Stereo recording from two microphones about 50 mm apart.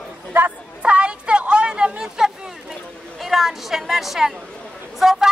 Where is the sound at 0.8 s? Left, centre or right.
Right.